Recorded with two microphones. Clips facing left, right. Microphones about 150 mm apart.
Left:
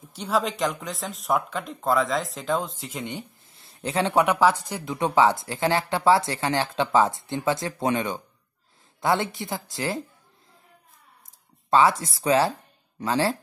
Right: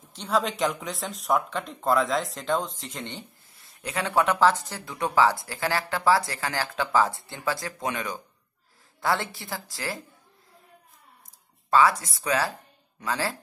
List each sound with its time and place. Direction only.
0.1 s speech: 5° left (ahead or behind)
3.5 s speech: 30° left (ahead or behind)
11.7 s speech: 25° left (ahead or behind)